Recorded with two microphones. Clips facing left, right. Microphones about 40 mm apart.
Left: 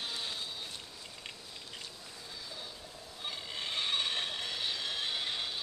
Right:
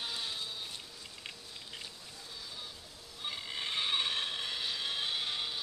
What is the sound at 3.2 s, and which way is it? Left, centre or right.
Neigh, centre.